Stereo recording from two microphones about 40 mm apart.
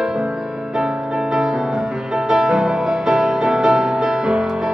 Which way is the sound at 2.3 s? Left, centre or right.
Centre.